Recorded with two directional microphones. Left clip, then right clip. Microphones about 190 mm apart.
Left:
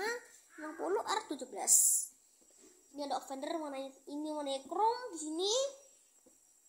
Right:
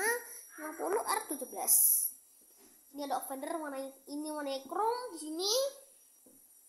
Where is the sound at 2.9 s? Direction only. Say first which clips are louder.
Right 2 dB; 15° right (ahead or behind).